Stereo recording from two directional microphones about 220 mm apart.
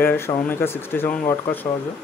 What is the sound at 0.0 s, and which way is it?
Speech, 10° left (ahead or behind).